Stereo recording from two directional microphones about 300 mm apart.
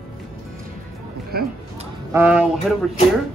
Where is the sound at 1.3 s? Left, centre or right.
Right.